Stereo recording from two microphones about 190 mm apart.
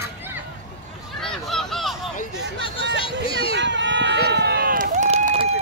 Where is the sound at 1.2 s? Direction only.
Centre (ahead or behind).